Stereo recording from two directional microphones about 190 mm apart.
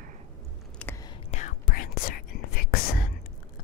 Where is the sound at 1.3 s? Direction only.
40° left (ahead or behind).